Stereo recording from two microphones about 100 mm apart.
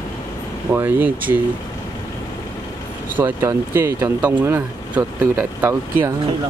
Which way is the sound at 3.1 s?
20° right (ahead or behind).